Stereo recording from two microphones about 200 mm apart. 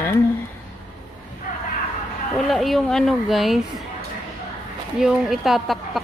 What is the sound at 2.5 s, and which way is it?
A woman's voice, centre (ahead or behind).